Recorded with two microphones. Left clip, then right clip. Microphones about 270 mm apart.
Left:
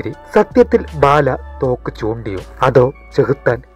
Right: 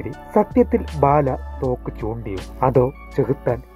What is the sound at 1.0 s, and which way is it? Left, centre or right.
Speech, left.